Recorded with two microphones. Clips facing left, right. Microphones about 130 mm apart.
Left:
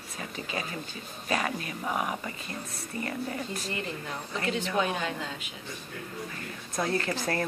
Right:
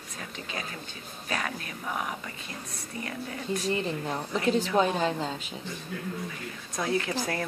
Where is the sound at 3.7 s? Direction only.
35° right (ahead or behind).